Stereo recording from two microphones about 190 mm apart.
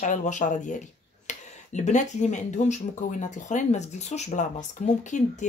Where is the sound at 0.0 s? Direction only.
40° left (ahead or behind).